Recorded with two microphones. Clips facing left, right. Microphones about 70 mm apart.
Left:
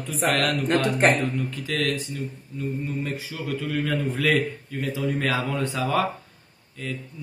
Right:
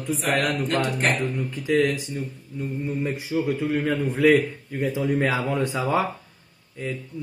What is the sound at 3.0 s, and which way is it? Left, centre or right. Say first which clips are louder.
A man's voice: right 6 dB; centre.